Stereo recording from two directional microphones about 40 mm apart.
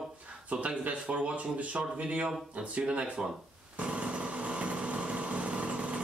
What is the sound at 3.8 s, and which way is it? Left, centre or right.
Lawn mower, right.